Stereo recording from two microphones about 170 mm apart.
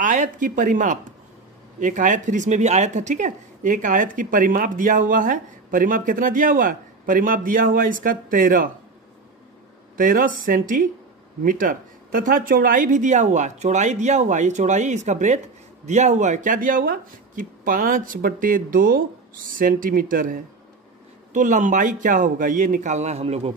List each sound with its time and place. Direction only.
0.0 s speech: 50° right (ahead or behind)
9.9 s speech: 55° right (ahead or behind); by 23.5 s 40° right (ahead or behind)